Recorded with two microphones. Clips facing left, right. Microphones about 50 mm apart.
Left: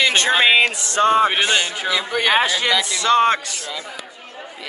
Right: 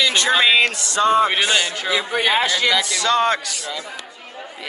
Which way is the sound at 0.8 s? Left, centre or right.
Left.